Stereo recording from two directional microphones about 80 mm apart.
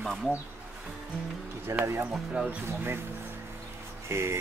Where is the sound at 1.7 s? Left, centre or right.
Right.